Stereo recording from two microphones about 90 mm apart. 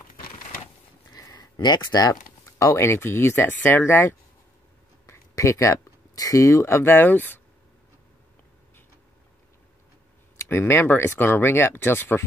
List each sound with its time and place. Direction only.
1.1 s a sound: 45° left (ahead or behind)
1.9 s speech: 45° left (ahead or behind)
2.6 s speech: 30° left (ahead or behind)
10.3 s speech: 30° left (ahead or behind)